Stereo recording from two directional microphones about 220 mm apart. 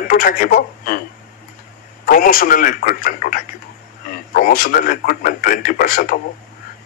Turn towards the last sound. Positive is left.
turn(degrees=40)  # may be behind; listen again after turning